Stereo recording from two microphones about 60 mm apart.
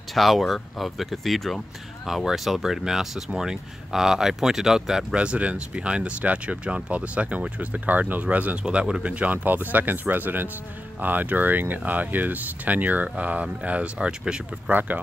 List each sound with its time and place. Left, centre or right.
0.1 s speech: centre; by 8.5 s right
8.6 s speech: centre
14.7 s speech: right